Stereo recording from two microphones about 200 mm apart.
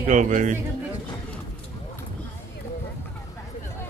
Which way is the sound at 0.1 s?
40° right (ahead or behind).